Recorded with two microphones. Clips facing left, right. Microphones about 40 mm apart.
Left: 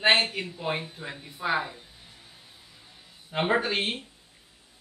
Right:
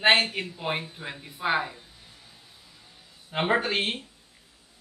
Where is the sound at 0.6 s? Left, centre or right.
Centre.